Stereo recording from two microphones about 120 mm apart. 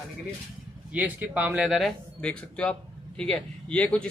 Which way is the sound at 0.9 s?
15° right (ahead or behind).